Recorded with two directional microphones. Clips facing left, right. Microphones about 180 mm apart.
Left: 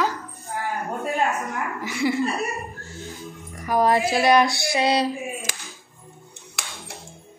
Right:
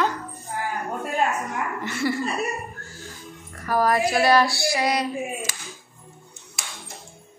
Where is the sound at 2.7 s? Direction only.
30° left (ahead or behind).